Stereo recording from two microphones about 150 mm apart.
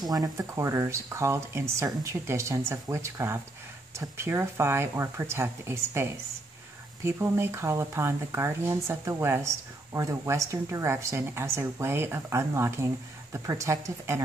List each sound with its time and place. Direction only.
0.1 s speech: 20° right (ahead or behind)